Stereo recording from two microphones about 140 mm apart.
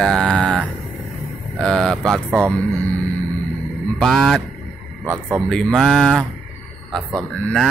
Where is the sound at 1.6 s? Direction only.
5° left (ahead or behind).